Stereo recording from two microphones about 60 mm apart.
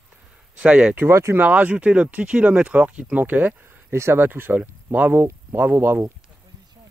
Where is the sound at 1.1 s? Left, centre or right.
Right.